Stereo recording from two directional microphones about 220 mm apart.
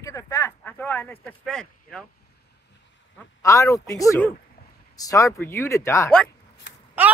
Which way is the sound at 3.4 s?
15° left (ahead or behind).